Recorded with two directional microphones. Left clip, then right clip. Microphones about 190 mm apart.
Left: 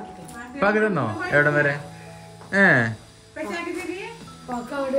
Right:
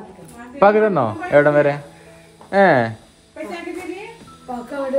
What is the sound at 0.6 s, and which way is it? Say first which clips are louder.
A man's voice: right 7 dB; 20° right (ahead or behind).